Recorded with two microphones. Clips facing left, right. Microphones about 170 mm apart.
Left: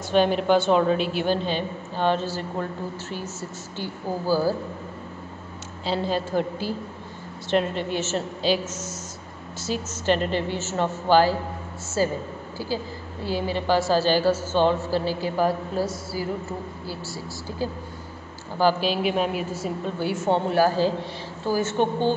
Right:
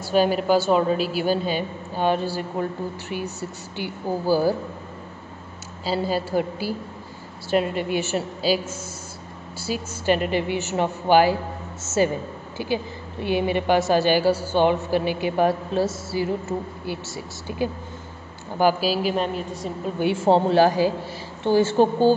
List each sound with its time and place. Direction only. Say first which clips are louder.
0.1 s a woman's voice: even; 5° right (ahead or behind)
3.7 s a woman's voice: right 2 dB; 15° right (ahead or behind)
5.9 s a woman's voice: right 1 dB; 5° right (ahead or behind)
9.6 s a woman's voice: even; 10° right (ahead or behind)
18.6 s a woman's voice: right 1 dB; 10° right (ahead or behind)
20.0 s a woman's voice: right 5 dB; 25° right (ahead or behind)